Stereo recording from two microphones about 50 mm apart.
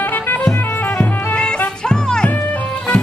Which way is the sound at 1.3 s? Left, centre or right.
Centre.